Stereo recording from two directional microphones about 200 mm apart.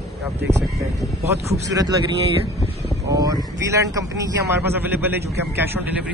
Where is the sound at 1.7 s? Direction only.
20° right (ahead or behind).